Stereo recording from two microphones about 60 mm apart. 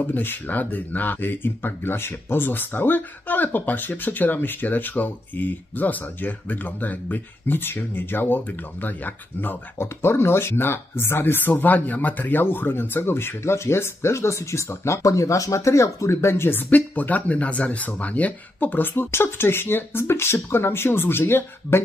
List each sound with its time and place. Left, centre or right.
0.0 s speech: left